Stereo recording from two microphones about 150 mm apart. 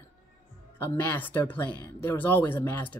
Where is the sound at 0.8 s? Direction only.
10° left (ahead or behind).